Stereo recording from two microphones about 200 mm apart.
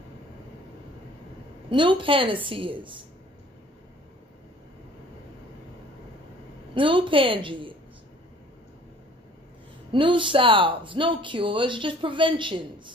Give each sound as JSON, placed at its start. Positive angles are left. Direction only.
{"t": 1.7, "sound": "speech", "side_deg": -25}
{"t": 6.7, "sound": "speech", "side_deg": -25}
{"t": 9.9, "sound": "speech", "side_deg": -25}